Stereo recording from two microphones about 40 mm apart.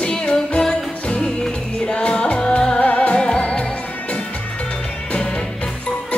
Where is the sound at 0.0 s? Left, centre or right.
Left.